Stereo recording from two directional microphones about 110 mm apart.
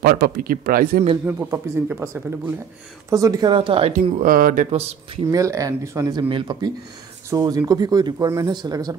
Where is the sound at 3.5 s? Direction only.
55° right (ahead or behind).